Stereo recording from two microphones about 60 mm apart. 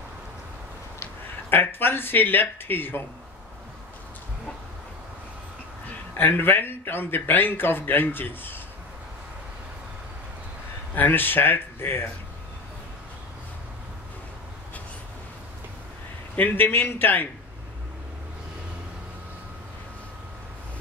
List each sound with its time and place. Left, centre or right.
1.5 s a man's voice: left
6.1 s a man's voice: left
11.0 s a man's voice: left
16.3 s a man's voice: left